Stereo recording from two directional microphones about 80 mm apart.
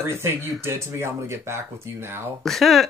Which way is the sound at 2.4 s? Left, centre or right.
Centre.